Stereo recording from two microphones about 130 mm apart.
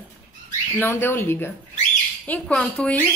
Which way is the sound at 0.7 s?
20° left (ahead or behind).